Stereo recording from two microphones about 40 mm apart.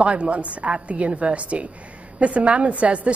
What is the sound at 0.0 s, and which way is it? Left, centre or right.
A woman's voice, right.